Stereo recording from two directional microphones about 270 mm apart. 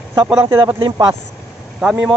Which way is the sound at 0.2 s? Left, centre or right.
Centre.